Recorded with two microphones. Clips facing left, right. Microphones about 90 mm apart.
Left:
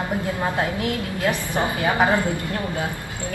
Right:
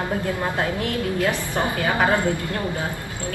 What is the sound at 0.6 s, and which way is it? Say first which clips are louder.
A woman's voice: even; 15° left (ahead or behind).